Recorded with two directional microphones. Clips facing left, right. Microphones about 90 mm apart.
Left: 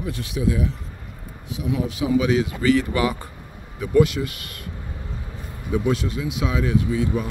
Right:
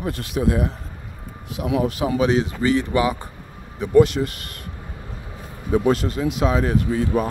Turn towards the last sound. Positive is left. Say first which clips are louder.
# right 2 dB
turn(degrees=-45)  # may be behind; listen again after turning